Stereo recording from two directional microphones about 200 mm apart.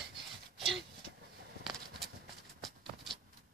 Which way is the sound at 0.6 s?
Centre (ahead or behind).